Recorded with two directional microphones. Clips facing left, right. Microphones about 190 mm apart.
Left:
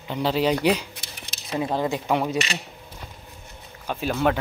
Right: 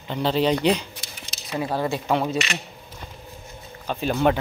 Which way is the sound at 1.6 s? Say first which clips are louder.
Even; 20° left (ahead or behind).